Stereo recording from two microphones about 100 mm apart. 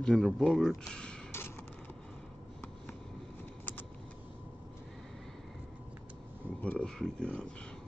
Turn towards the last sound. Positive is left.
turn(degrees=10)  # may be behind; listen again after turning